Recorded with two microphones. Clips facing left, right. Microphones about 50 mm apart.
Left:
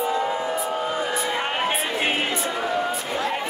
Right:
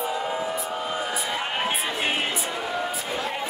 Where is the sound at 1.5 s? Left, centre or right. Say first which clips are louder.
Left 2 dB; centre.